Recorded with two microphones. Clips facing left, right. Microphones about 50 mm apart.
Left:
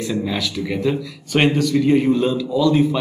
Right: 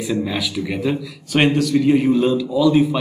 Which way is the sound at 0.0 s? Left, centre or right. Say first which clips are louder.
Right 1 dB; centre.